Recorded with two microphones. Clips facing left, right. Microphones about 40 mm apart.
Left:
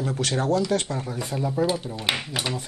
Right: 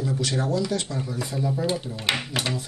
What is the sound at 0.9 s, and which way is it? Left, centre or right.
Speech, left.